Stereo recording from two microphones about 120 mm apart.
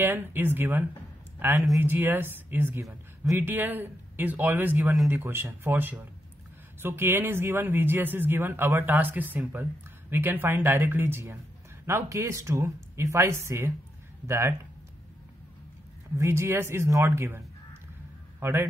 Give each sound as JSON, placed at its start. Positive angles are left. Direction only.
{"t": 0.0, "sound": "speech", "side_deg": -15}
{"t": 16.2, "sound": "speech", "side_deg": -20}
{"t": 18.4, "sound": "a man's voice", "side_deg": -20}